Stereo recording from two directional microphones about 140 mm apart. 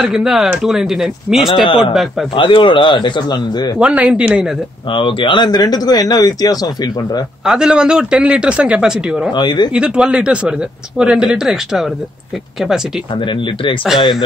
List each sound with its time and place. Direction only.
0.0 s speech: 5° right (ahead or behind)
2.3 s speech: 35° left (ahead or behind)
3.8 s speech: 10° right (ahead or behind)
4.8 s speech: 40° left (ahead or behind)
7.4 s speech: 5° right (ahead or behind)
9.3 s speech: 30° left (ahead or behind)
9.7 s speech: 5° right (ahead or behind)
13.1 s speech: 35° left (ahead or behind)